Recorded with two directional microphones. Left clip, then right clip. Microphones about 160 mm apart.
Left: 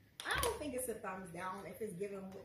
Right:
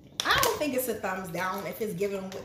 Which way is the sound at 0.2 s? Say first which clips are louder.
Right 14 dB; 20° right (ahead or behind).